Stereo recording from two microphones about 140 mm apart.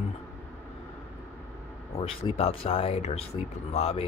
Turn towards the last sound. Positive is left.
turn(degrees=45)  # may be behind; listen again after turning